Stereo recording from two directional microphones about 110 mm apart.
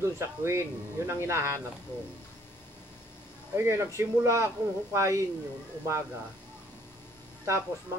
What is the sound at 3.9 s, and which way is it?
Speech, 25° right (ahead or behind).